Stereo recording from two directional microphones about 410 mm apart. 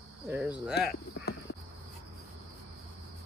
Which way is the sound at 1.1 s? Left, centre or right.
Left.